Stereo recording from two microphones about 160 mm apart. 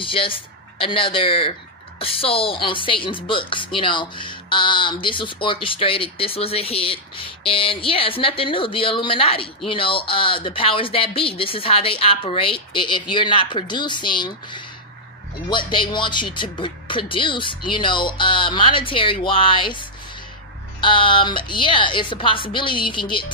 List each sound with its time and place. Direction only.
0.0 s a woman's voice: 35° left (ahead or behind)
20.8 s a woman's voice: 30° left (ahead or behind)